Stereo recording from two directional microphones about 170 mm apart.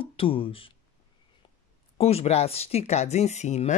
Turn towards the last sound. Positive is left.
turn(degrees=40)  # may be behind; listen again after turning